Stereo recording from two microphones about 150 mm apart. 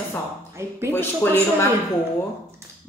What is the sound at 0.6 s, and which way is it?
Speech, 15° right (ahead or behind).